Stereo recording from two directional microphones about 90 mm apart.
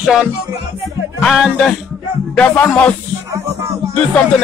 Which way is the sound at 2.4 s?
15° left (ahead or behind).